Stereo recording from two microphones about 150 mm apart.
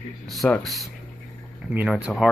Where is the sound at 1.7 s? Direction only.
10° right (ahead or behind).